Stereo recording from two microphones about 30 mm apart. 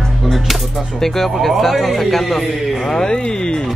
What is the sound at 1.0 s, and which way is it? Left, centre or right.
A man's voice, centre.